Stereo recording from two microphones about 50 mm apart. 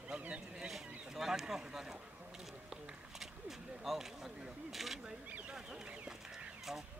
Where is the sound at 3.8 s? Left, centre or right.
Centre.